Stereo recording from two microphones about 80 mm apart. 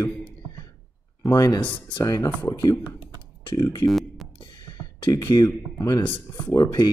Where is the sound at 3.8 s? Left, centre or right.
Centre.